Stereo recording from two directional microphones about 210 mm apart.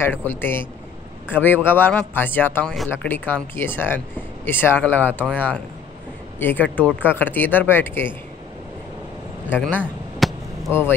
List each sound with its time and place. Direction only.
0.0 s speech: 10° left (ahead or behind)
9.5 s a sound: 10° left (ahead or behind)
10.7 s speech: 10° left (ahead or behind)